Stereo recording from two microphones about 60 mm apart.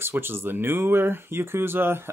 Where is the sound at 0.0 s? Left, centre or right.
Right.